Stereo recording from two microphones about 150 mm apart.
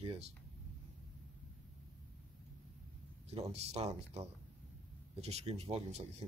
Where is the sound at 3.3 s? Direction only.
45° right (ahead or behind).